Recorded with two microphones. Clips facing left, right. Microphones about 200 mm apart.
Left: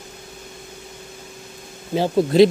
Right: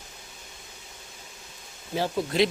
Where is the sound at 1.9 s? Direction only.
30° left (ahead or behind).